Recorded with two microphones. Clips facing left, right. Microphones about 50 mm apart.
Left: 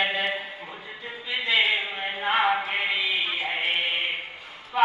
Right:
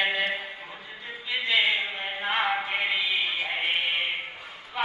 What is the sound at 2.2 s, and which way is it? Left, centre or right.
Chant, centre.